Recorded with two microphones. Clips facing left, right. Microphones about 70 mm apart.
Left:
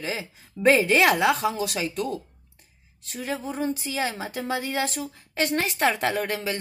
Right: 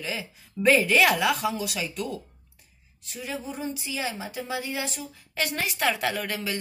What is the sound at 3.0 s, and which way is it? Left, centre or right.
A woman's voice, left.